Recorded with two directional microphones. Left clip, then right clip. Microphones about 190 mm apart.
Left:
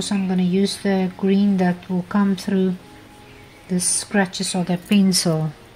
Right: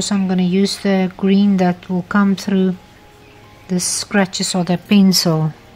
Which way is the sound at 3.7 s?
35° right (ahead or behind).